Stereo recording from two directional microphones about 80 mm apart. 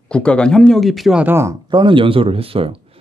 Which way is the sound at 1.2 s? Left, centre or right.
Right.